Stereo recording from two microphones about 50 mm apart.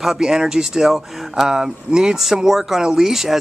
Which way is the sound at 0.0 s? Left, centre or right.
Centre.